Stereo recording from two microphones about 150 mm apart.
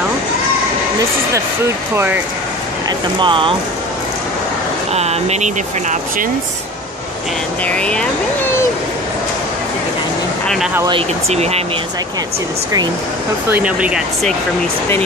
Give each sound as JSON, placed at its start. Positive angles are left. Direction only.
{"t": 3.2, "sound": "speech", "side_deg": -35}
{"t": 4.9, "sound": "speech", "side_deg": -45}
{"t": 7.6, "sound": "speech", "side_deg": 5}
{"t": 10.9, "sound": "speech", "side_deg": -40}
{"t": 13.5, "sound": "speech", "side_deg": -10}